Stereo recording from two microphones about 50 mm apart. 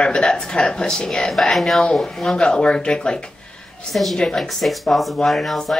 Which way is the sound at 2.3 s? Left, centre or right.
Centre.